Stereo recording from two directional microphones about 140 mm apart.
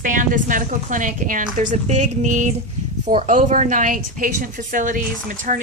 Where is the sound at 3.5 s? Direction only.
60° right (ahead or behind).